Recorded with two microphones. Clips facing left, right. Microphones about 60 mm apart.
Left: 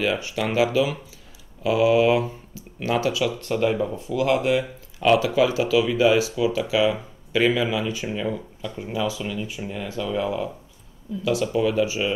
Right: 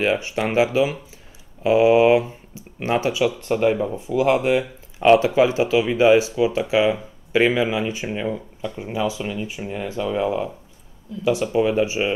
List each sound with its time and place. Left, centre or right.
0.0 s speech: right